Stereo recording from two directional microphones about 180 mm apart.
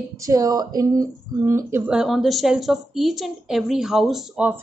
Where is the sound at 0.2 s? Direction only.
20° right (ahead or behind).